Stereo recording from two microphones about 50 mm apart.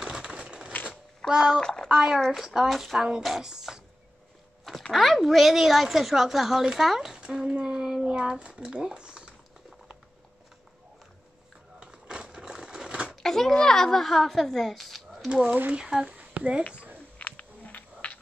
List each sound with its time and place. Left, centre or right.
0.0 s typewriter: centre
1.3 s speech: centre
1.6 s a child's voice: centre
2.3 s a woman's voice: centre
3.4 s speech: centre
4.9 s a woman's voice: centre
7.3 s a sound: centre
11.8 s a sound: centre
13.1 s a woman's voice: centre
15.2 s speech: centre
16.1 s a sound: right
17.2 s a sound: left